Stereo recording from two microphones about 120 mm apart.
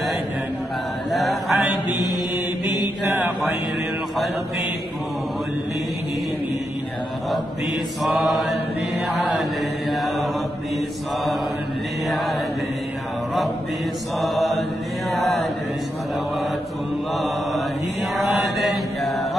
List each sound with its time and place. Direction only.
1.1 s chant: centre (ahead or behind)
3.1 s mantra: 15° right (ahead or behind)
8.0 s mantra: centre (ahead or behind)
14.2 s mantra: centre (ahead or behind)
15.0 s chant: centre (ahead or behind)
18.1 s chant: centre (ahead or behind)